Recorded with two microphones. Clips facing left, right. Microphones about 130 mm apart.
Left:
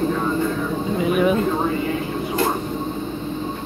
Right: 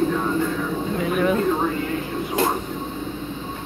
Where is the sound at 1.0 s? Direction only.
15° left (ahead or behind).